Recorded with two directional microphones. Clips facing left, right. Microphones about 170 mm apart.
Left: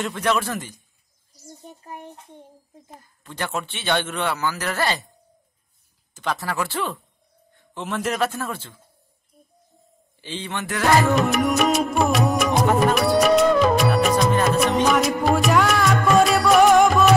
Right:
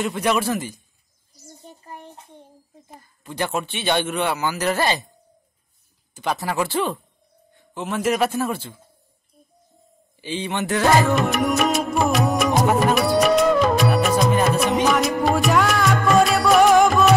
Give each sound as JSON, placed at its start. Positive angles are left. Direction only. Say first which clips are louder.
{"t": 0.0, "sound": "speech", "louder": "right 2 dB", "side_deg": -10}
{"t": 2.9, "sound": "speech", "louder": "right 4 dB", "side_deg": -15}
{"t": 6.1, "sound": "speech", "louder": "right 2 dB", "side_deg": -15}
{"t": 7.7, "sound": "speech", "louder": "right 4 dB", "side_deg": -5}
{"t": 10.2, "sound": "speech", "louder": "right 5 dB", "side_deg": -15}
{"t": 11.1, "sound": "music", "louder": "even", "side_deg": 0}